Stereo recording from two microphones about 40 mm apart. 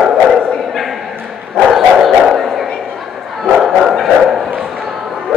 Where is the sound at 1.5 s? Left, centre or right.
Centre.